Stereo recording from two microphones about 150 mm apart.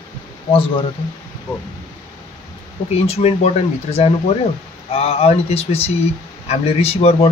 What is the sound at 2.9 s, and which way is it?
Speech, 45° left (ahead or behind).